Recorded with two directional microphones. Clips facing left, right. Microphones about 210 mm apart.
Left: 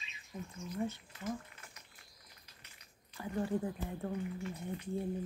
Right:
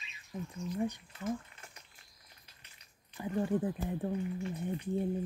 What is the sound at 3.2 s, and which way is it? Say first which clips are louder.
Speech: right 3 dB; 20° right (ahead or behind).